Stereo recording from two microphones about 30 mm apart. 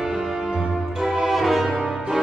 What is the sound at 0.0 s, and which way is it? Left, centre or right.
Music, centre.